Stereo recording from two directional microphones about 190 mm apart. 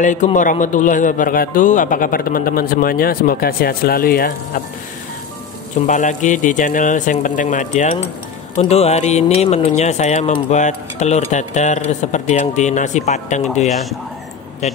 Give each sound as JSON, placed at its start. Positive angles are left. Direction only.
{"t": 0.0, "sound": "a man's voice", "side_deg": 40}
{"t": 5.9, "sound": "speech", "side_deg": 40}